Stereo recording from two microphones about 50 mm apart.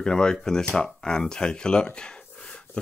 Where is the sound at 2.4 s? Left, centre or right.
Left.